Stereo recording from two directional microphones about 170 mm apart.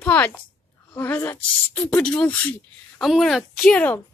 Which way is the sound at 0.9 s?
10° left (ahead or behind).